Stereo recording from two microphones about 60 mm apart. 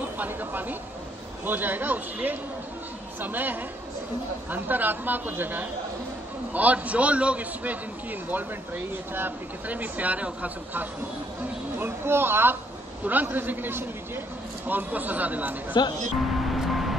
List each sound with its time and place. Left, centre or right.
0.2 s speech: right
11.8 s speech: right
13.0 s speech: right
16.2 s vehicle: centre